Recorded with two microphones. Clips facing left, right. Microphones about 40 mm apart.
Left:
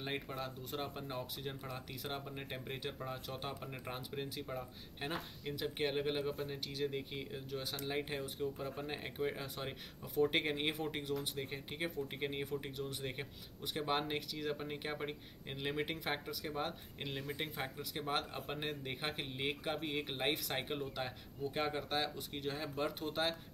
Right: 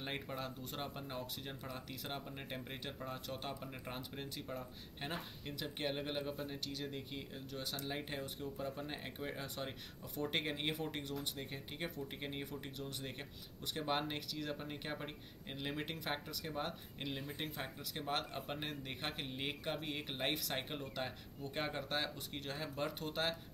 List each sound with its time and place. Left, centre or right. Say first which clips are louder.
0.0 s speech: left 2 dB; centre